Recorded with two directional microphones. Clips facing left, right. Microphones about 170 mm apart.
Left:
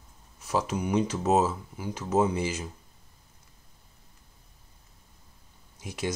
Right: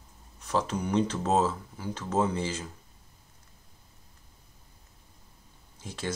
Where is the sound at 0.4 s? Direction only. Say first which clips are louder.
Left 1 dB; 10° left (ahead or behind).